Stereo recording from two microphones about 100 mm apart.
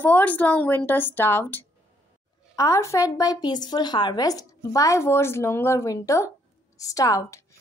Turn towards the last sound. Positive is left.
turn(degrees=35)  # may be behind; listen again after turning